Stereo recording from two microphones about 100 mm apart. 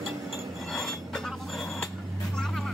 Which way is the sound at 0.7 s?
Centre (ahead or behind).